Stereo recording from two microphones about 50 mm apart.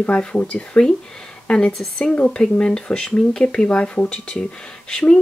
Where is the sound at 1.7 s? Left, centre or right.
Centre.